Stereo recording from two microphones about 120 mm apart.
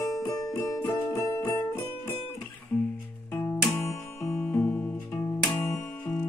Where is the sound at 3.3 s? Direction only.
20° left (ahead or behind).